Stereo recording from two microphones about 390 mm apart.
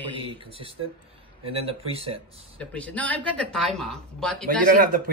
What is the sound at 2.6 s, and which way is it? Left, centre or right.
Speech, centre.